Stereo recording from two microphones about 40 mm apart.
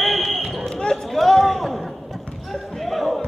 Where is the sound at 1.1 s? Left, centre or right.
Centre.